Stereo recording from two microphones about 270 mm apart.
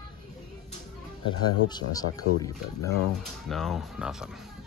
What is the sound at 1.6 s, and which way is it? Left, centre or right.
Speech, centre.